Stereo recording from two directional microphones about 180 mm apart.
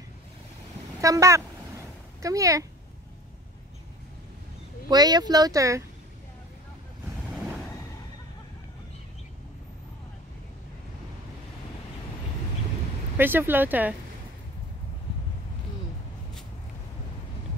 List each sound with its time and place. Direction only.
1.0 s speech: 15° right (ahead or behind)
4.8 s speech: 20° right (ahead or behind)
13.2 s speech: 10° right (ahead or behind)